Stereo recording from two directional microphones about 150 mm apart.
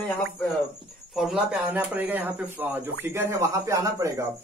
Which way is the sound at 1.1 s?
5° right (ahead or behind).